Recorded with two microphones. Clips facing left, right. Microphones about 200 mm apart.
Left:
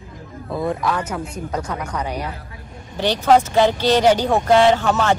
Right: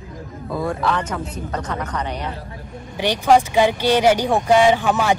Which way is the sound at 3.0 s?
10° right (ahead or behind).